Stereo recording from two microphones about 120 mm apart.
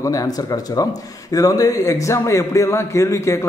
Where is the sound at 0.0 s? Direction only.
30° left (ahead or behind).